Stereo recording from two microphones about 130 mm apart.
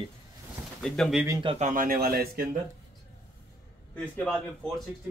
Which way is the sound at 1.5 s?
80° right.